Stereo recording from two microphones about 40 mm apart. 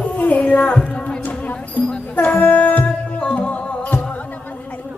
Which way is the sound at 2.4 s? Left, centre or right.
Left.